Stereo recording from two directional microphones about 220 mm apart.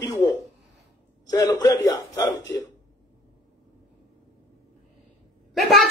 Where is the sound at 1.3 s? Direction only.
15° left (ahead or behind).